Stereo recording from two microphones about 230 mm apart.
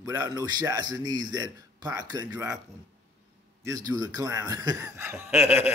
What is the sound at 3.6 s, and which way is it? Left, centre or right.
Speech, centre.